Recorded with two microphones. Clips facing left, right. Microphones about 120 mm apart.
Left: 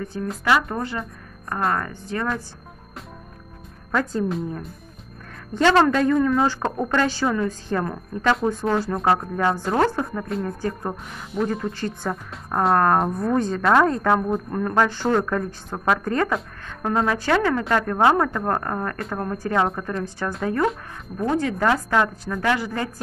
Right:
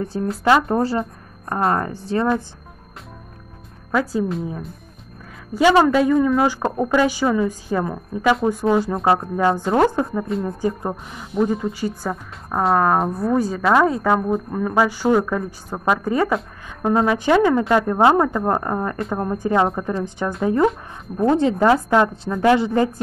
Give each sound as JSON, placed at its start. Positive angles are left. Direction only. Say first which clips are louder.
{"t": 0.0, "sound": "speech", "louder": "right 6 dB", "side_deg": -30}
{"t": 3.9, "sound": "speech", "louder": "right 2 dB", "side_deg": -5}
{"t": 5.5, "sound": "a woman's voice", "louder": "right 3 dB", "side_deg": -10}
{"t": 18.3, "sound": "a woman's voice", "louder": "right 3 dB", "side_deg": -5}
{"t": 18.6, "sound": "a woman's voice", "louder": "right 4 dB", "side_deg": -15}